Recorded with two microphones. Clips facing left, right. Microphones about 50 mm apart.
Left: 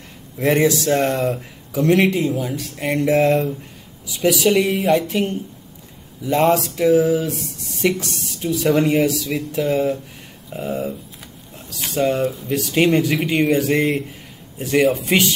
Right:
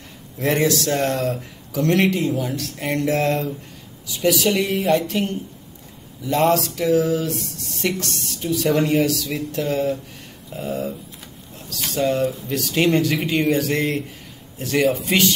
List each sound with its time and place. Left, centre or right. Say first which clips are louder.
0.4 s a man's voice: left 3 dB; centre
5.0 s a man's voice: left 2 dB; centre
6.4 s a man's voice: left 2 dB; centre
10.5 s speech: left 2 dB; centre
12.0 s speech: left 1 dB; centre
12.5 s a man's voice: left 2 dB; centre